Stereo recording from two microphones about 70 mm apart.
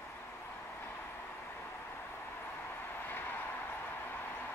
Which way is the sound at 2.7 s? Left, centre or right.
Left.